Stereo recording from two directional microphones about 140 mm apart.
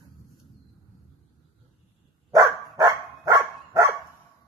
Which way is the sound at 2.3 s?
25° right (ahead or behind).